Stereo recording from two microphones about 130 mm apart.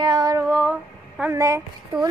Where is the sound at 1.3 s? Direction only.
20° right (ahead or behind).